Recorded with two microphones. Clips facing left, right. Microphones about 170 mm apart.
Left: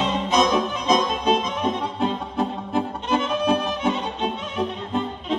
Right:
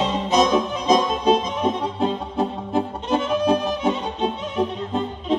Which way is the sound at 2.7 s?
35° right (ahead or behind).